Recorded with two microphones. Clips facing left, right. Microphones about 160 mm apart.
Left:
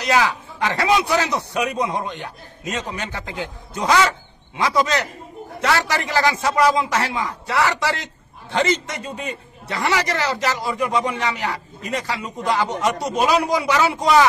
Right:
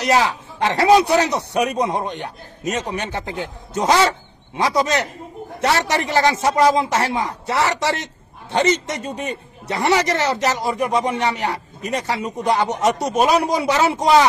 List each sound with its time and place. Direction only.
0.7 s a man's voice: 35° right (ahead or behind)
1.1 s a man's voice: 20° right (ahead or behind)